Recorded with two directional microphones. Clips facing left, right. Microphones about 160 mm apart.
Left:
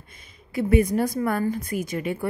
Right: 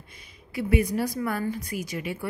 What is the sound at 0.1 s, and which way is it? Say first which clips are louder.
A woman's voice: left 5 dB; 50° left (ahead or behind).